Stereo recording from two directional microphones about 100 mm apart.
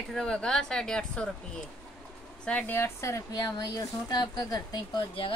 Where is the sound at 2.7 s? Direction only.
25° left (ahead or behind); by 4.9 s 45° left (ahead or behind).